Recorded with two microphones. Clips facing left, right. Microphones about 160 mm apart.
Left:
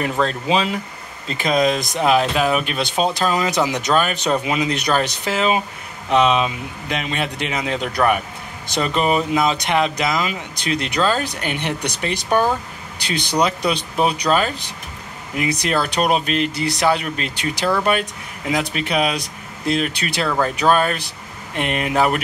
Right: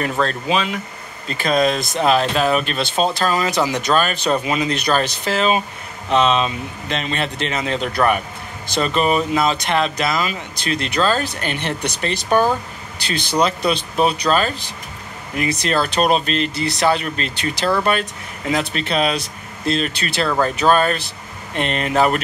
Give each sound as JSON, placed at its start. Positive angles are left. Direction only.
{"t": 0.0, "sound": "speech", "side_deg": 15}
{"t": 0.5, "sound": "speech", "side_deg": 30}
{"t": 1.2, "sound": "speech", "side_deg": 20}